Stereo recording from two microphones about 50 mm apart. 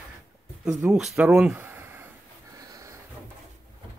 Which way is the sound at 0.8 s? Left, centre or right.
Right.